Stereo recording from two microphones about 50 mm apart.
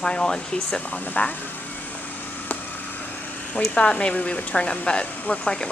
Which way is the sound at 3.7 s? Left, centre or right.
Left.